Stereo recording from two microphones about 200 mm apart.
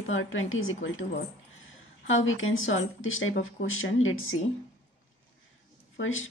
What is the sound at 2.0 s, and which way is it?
A woman's voice, 80° left.